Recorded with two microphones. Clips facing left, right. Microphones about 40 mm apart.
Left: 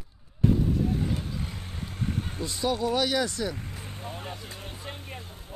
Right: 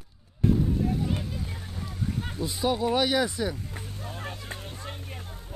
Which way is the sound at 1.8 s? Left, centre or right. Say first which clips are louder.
Left 1 dB; left.